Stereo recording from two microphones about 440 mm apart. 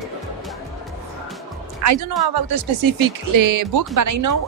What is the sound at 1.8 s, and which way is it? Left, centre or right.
Speech, right.